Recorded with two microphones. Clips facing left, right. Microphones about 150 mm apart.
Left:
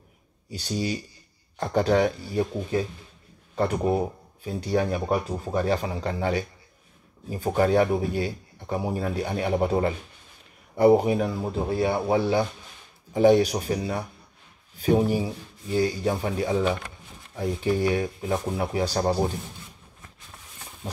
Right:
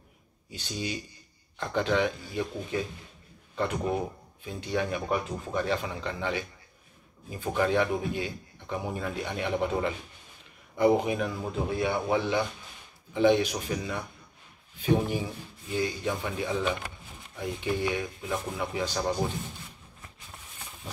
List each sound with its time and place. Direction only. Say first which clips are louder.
0.5 s speech: left 6 dB; 40° left (ahead or behind)